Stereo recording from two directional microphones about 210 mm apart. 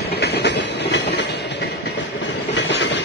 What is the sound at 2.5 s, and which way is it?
Train, 55° left (ahead or behind).